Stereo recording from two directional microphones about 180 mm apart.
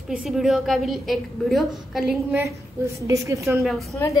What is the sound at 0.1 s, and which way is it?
A woman's voice, centre (ahead or behind).